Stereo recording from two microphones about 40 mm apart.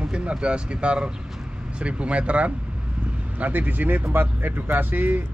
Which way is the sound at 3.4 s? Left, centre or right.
Right.